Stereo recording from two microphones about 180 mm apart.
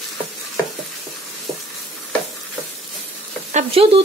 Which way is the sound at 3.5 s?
35° right (ahead or behind).